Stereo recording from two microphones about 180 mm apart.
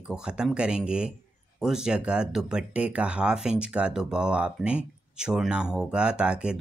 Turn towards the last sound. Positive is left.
turn(degrees=-5)  # may be behind; listen again after turning